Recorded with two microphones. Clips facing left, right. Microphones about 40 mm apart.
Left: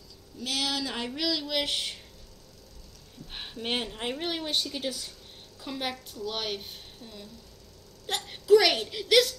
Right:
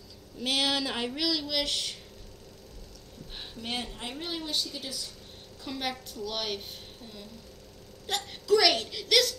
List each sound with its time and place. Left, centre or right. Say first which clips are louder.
0.4 s speech: right 3 dB; centre
1.1 s a sound: left 3 dB; centre
3.3 s a woman's voice: left 4 dB; left
5.6 s a woman's voice: even; centre
8.1 s a woman's voice: left 5 dB; centre